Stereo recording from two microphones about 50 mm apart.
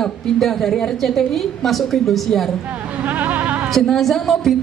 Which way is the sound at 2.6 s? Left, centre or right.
Right.